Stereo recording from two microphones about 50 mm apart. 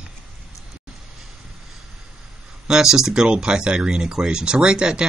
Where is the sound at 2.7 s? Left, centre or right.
Centre.